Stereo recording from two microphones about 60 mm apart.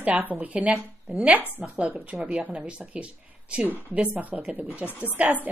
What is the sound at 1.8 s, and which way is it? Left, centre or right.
A woman's voice, right.